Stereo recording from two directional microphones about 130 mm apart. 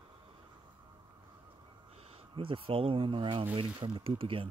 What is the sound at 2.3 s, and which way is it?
Speech, 40° right (ahead or behind).